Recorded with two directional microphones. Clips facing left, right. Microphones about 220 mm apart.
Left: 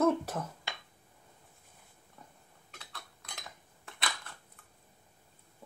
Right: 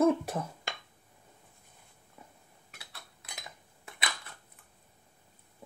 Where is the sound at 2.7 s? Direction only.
10° right (ahead or behind).